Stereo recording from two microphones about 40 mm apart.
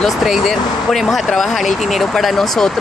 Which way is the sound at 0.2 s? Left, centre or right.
Centre.